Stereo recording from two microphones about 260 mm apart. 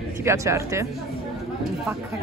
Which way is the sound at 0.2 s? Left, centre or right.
Centre.